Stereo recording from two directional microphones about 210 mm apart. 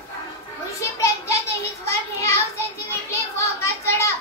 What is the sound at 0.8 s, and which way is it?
Children playing, 15° left (ahead or behind).